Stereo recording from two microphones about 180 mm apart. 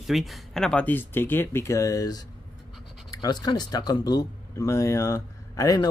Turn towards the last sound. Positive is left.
turn(degrees=20)  # may be behind; listen again after turning